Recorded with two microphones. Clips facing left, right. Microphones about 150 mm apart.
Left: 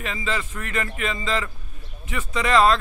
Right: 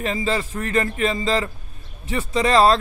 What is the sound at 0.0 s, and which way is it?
Speech, 35° right (ahead or behind).